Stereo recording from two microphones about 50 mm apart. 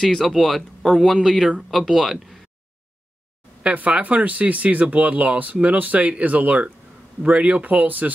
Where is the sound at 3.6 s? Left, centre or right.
Right.